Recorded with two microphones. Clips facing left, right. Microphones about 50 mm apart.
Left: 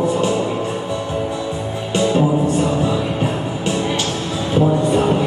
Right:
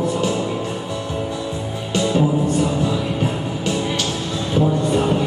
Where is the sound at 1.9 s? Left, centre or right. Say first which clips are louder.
Left 2 dB; centre.